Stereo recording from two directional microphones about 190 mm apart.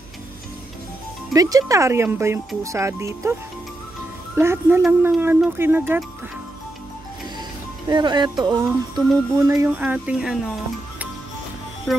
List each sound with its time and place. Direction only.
1.3 s music: 20° right (ahead or behind)
4.4 s music: 15° right (ahead or behind)
7.9 s music: 25° right (ahead or behind); by 10.4 s 5° right (ahead or behind)